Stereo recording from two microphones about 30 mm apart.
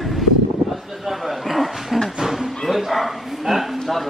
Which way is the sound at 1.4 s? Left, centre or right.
Centre.